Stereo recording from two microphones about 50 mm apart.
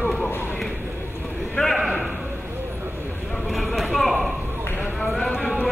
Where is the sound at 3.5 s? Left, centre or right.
Centre.